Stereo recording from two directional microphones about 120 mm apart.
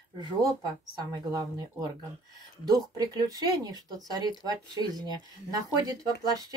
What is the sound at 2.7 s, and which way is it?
Speech, 30° right (ahead or behind).